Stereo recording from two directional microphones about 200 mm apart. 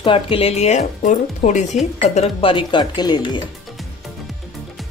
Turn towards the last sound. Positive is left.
turn(degrees=20)  # may be behind; listen again after turning